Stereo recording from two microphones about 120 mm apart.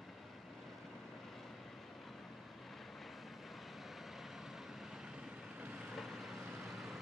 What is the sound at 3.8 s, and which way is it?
Vehicle, centre (ahead or behind).